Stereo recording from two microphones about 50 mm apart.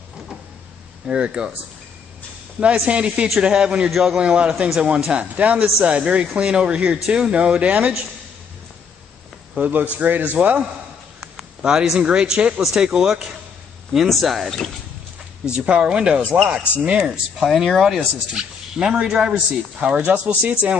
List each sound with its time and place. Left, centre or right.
1.0 s speech: right
2.9 s speech: right
3.9 s speech: centre
4.2 s speech: right
9.6 s a man's voice: right
11.1 s a sound: centre
12.0 s speech: centre
15.4 s speech: right
17.0 s speech: centre
19.3 s speech: right